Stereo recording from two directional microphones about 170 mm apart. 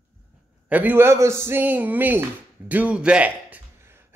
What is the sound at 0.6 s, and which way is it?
Speech, 10° right (ahead or behind).